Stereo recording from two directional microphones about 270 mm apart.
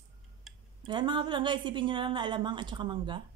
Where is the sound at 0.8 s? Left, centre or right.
Centre.